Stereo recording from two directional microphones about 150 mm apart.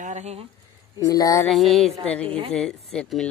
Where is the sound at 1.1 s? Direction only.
25° left (ahead or behind).